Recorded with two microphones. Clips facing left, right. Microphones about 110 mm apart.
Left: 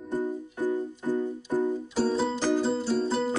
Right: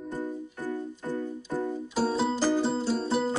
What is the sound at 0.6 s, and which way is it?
Music, 15° left (ahead or behind).